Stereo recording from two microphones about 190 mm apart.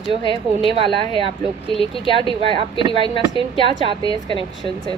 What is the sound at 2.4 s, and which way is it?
Speech, 25° right (ahead or behind).